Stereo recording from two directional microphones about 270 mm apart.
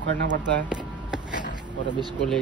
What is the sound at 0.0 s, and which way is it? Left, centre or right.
Speech, right.